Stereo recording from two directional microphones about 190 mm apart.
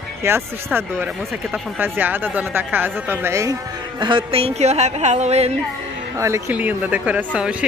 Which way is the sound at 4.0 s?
25° right (ahead or behind).